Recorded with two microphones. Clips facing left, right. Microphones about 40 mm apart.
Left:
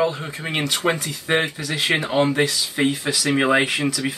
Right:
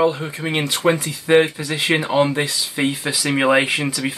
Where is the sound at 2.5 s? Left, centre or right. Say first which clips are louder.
Even; right.